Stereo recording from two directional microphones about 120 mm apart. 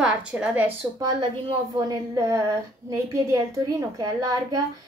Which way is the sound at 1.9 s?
25° right (ahead or behind).